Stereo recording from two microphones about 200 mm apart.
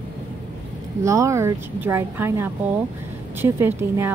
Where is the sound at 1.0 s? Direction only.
15° right (ahead or behind).